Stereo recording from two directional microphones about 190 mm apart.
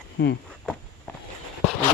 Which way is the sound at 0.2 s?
70° left (ahead or behind).